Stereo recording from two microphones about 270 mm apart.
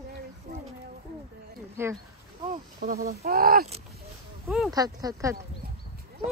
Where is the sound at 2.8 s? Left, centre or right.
Right.